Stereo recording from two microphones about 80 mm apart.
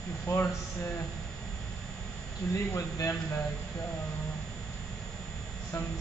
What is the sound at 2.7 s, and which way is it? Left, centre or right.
Speech, left.